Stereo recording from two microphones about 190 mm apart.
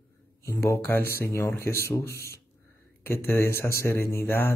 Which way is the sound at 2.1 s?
55° left (ahead or behind).